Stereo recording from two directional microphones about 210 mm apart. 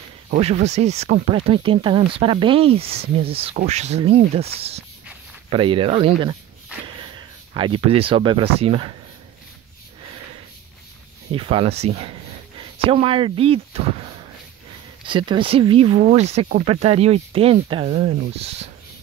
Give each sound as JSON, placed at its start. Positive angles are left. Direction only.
{"t": 0.3, "sound": "speech", "side_deg": -30}
{"t": 11.3, "sound": "speech", "side_deg": -25}